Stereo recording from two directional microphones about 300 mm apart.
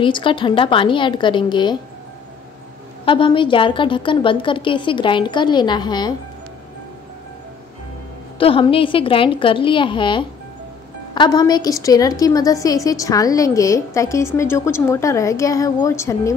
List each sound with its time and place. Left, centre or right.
0.0 s a woman's voice: centre
3.1 s a woman's voice: centre
8.4 s a woman's voice: centre